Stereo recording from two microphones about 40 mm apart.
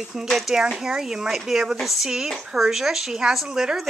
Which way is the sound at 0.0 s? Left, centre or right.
Centre.